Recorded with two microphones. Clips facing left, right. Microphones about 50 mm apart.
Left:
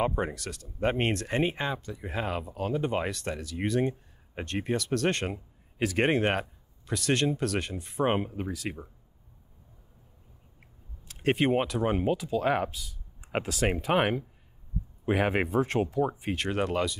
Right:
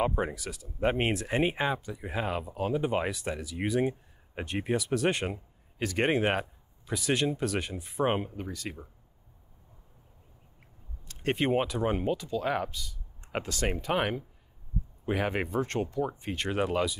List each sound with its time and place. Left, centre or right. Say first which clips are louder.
0.0 s speech: even; centre
11.1 s speech: left 3 dB; centre
13.9 s speech: left 4 dB; centre